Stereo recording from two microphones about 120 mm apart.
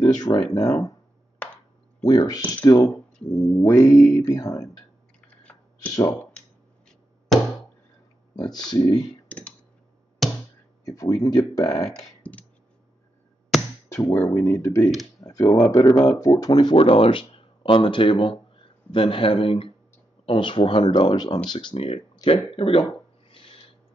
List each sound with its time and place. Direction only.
0.0 s speech: 35° left (ahead or behind)
1.4 s chop: 10° left (ahead or behind)
2.0 s speech: 30° left (ahead or behind)
3.5 s speech: 25° left (ahead or behind)
5.4 s a sound: 10° left (ahead or behind)
8.4 s speech: 35° left (ahead or behind)
10.9 s speech: 30° left (ahead or behind)
12.2 s a sound: 10° left (ahead or behind)
13.9 s speech: 15° left (ahead or behind); by 16.7 s 35° left (ahead or behind)
16.7 s speech: 50° left (ahead or behind)
23.3 s owl: 50° left (ahead or behind)